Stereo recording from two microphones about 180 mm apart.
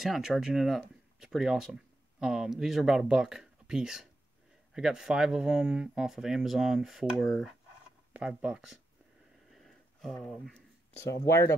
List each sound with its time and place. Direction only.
0.0 s speech: centre (ahead or behind)
9.5 s a sound: centre (ahead or behind)
11.2 s speech: 15° left (ahead or behind)